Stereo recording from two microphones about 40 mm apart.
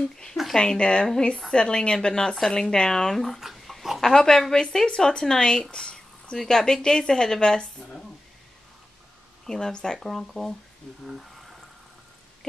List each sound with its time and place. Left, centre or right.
0.1 s a woman's voice: left
3.3 s dog: centre
4.0 s a woman's voice: centre
6.3 s a woman's voice: centre
9.5 s a woman's voice: centre